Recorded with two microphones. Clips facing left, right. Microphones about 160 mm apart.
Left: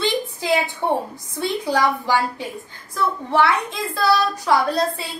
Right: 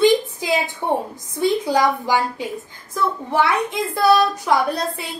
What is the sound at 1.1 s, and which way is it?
A woman's voice, 20° right (ahead or behind).